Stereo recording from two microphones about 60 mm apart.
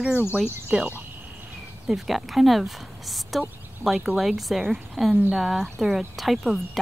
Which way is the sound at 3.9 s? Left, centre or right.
Centre.